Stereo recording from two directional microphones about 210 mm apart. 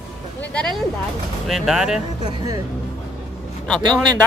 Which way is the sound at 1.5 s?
Centre (ahead or behind).